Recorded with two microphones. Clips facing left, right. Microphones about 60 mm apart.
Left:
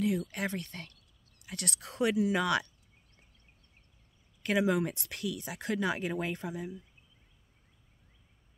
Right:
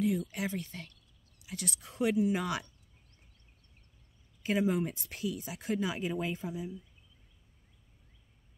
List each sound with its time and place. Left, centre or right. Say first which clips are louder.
0.0 s speech: even; left
4.4 s speech: left 2 dB; left